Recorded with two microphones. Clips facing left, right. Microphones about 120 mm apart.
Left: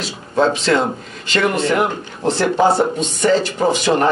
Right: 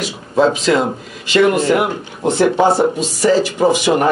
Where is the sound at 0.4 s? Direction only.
5° right (ahead or behind).